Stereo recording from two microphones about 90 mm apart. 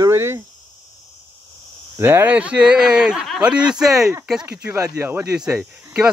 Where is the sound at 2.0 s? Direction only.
20° right (ahead or behind).